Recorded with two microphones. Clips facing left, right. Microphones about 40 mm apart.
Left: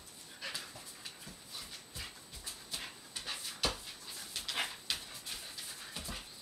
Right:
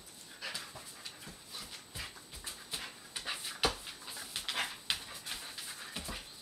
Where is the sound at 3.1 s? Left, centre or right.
Centre.